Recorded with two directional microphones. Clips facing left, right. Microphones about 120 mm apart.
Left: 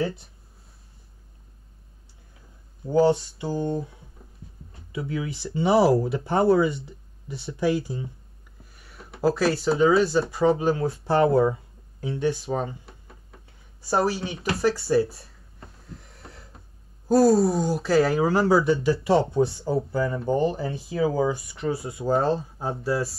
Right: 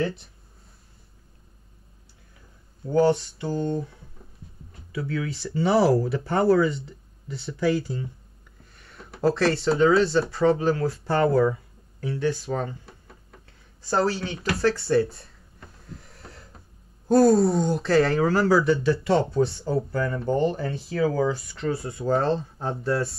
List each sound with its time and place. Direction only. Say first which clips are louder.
3.1 s speech: even; 15° left (ahead or behind)
8.7 s speech: right 1 dB; 5° left (ahead or behind)
10.3 s speech: even; 15° left (ahead or behind)
12.8 s a sound: even; 5° left (ahead or behind)
13.8 s speech: even; 20° left (ahead or behind)
14.6 s speech: even; 10° left (ahead or behind)
15.8 s a sound: right 2 dB; centre (ahead or behind)
17.1 s speech: right 1 dB; 5° left (ahead or behind)
18.2 s speech: even; 20° left (ahead or behind); by 23.1 s 5° left (ahead or behind)